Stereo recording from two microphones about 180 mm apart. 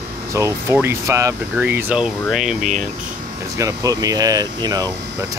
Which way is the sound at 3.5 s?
20° right (ahead or behind).